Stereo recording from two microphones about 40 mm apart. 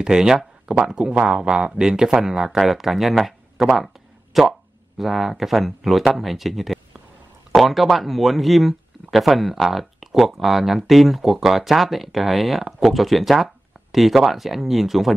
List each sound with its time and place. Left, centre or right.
0.0 s speech: centre